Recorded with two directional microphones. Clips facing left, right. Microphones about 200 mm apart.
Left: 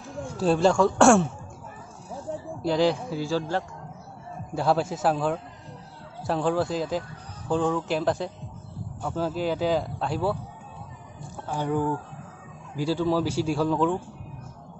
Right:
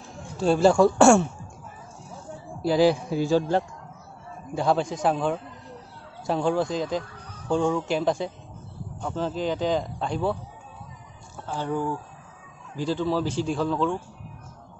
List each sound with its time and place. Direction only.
0.4 s speech: centre (ahead or behind)
2.6 s a man's voice: 5° right (ahead or behind)
4.6 s speech: 5° left (ahead or behind)
11.4 s speech: 15° left (ahead or behind)